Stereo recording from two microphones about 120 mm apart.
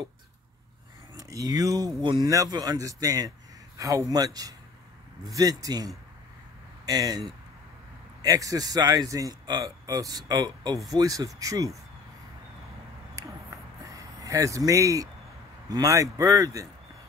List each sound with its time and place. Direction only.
1.1 s a man's voice: 30° right (ahead or behind)
6.9 s a man's voice: 30° right (ahead or behind)
13.2 s a sound: 25° right (ahead or behind)
15.7 s a man's voice: 30° right (ahead or behind)